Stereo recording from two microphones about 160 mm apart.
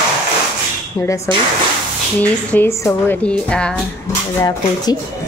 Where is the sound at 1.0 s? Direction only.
20° left (ahead or behind).